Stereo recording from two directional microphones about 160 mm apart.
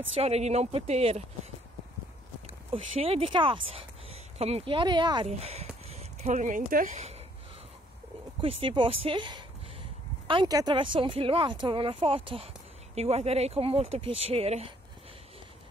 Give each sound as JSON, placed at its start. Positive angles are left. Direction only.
{"t": 0.1, "sound": "speech", "side_deg": -40}
{"t": 2.4, "sound": "speech", "side_deg": -40}
{"t": 5.4, "sound": "speech", "side_deg": -40}
{"t": 8.4, "sound": "speech", "side_deg": -35}